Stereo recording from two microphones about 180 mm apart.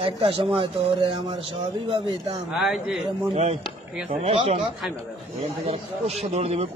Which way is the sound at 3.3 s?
35° right (ahead or behind).